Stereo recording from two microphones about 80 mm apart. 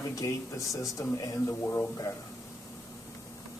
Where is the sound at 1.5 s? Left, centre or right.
Left.